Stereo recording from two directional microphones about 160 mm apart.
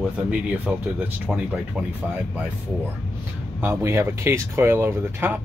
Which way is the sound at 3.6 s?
15° right (ahead or behind).